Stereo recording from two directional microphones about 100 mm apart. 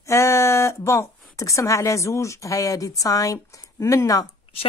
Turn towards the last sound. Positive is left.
turn(degrees=35)  # may be behind; listen again after turning